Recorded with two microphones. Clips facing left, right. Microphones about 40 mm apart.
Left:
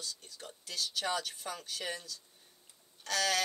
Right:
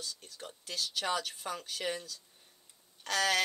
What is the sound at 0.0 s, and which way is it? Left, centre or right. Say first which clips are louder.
Speech: right 1 dB; centre.